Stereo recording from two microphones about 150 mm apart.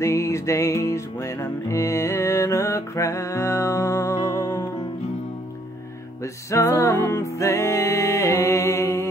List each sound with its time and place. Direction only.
0.0 s music: 20° left (ahead or behind)
6.2 s music: 20° left (ahead or behind)